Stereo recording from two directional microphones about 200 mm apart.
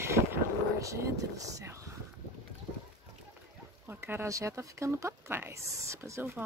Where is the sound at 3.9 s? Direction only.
10° right (ahead or behind).